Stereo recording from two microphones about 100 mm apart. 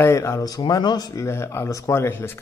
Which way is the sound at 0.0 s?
30° left (ahead or behind).